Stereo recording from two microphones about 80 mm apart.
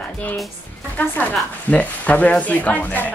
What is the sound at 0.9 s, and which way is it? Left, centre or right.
A woman's voice, centre.